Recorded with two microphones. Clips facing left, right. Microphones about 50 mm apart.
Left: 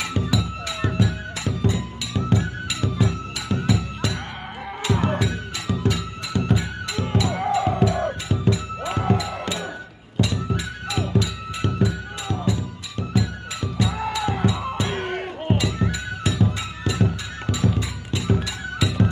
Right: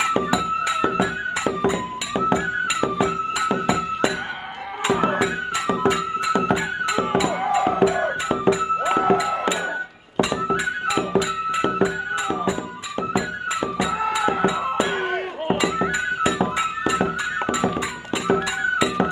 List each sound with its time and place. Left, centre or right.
0.0 s music: right
5.2 s music: right
13.8 s music: centre
14.1 s music: right